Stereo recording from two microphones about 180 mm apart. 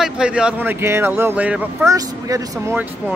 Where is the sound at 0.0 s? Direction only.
5° right (ahead or behind).